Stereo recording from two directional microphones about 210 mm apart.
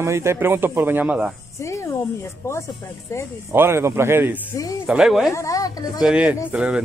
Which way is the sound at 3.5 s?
10° right (ahead or behind).